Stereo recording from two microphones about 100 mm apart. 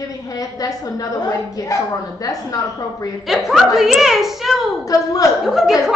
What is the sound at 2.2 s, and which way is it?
Speech, 35° left (ahead or behind).